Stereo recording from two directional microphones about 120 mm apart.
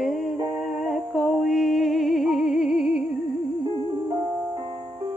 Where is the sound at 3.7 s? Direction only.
35° right (ahead or behind).